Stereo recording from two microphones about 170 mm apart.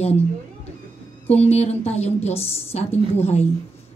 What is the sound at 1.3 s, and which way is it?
A woman's voice, 40° left (ahead or behind).